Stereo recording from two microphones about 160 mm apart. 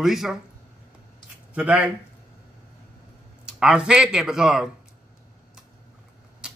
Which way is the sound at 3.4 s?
5° right (ahead or behind).